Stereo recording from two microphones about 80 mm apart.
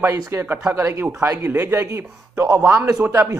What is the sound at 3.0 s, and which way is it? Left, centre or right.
Speech, centre.